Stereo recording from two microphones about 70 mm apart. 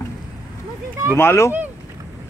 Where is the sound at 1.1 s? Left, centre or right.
Left.